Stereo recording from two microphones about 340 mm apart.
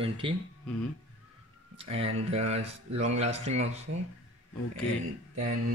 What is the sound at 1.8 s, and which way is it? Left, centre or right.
Speech, centre.